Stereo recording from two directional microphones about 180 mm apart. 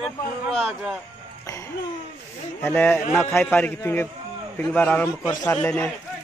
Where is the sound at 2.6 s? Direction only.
10° left (ahead or behind).